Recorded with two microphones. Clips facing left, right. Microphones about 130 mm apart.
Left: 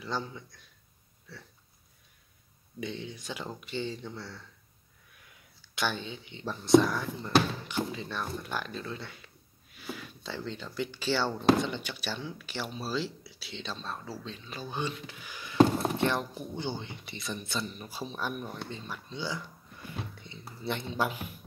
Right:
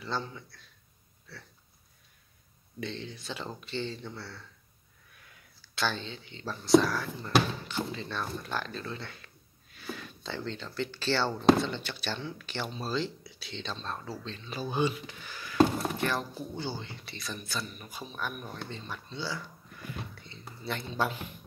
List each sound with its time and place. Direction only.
0.0 s speech: 10° left (ahead or behind)
2.8 s speech: 10° left (ahead or behind)
5.8 s speech: 15° left (ahead or behind)
14.5 s speech: 10° right (ahead or behind)
15.0 s speech: 10° left (ahead or behind); by 18.5 s 30° left (ahead or behind)
18.5 s speech: 10° left (ahead or behind)